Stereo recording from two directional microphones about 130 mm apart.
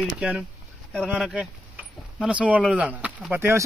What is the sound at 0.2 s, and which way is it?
Speech, 5° right (ahead or behind).